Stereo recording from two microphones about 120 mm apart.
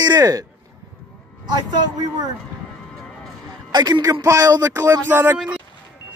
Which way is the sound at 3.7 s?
35° right (ahead or behind).